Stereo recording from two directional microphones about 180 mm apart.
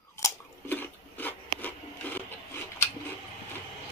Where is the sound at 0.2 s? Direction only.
10° left (ahead or behind).